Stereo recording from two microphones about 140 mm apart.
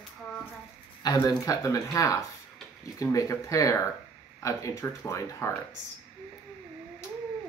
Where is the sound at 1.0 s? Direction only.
30° left (ahead or behind).